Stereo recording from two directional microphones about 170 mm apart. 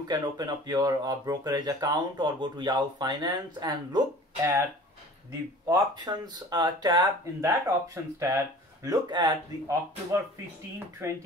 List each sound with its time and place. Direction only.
0.1 s speech: 25° right (ahead or behind)
5.7 s speech: 25° right (ahead or behind)